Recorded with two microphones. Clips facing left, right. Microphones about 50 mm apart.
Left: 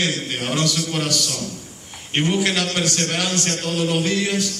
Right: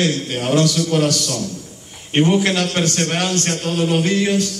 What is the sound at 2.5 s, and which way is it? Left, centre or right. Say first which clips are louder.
Speech: right 3 dB; right.